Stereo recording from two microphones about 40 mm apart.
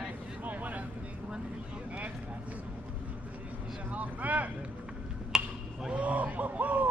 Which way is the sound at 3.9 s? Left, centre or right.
Right.